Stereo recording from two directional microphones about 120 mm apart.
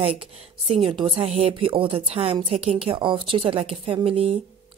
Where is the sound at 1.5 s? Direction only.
45° right (ahead or behind).